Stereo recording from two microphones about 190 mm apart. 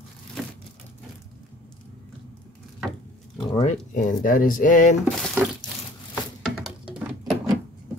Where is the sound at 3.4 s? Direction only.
25° left (ahead or behind).